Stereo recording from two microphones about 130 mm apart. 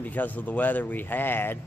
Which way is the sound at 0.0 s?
15° left (ahead or behind).